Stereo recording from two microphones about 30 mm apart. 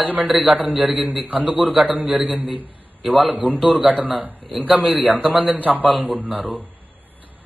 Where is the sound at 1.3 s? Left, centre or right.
Right.